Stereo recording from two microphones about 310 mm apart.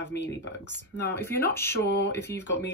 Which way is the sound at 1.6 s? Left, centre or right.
Centre.